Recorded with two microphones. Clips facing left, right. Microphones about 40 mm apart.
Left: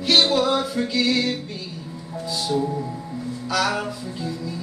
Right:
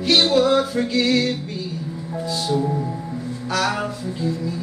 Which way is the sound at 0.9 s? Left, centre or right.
Right.